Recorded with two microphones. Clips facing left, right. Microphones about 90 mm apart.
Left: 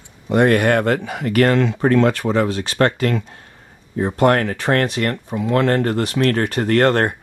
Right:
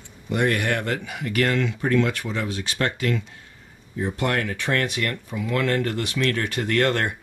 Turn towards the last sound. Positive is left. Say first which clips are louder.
# left 6 dB
turn(degrees=40)  # may be behind; listen again after turning